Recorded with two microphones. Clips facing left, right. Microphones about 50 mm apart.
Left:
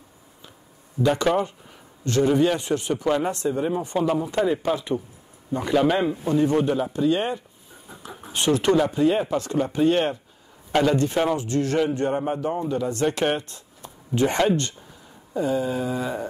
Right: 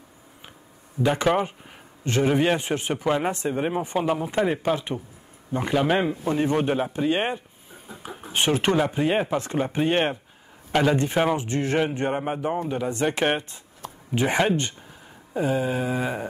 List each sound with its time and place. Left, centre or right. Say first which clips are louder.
1.0 s a man's voice: left 1 dB; right
3.4 s speech: left 1 dB; right
3.8 s a man's voice: left 1 dB; right
5.5 s a man's voice: left 2 dB; right